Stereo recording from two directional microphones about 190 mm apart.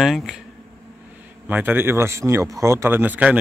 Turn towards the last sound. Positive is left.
turn(degrees=-10)  # may be behind; listen again after turning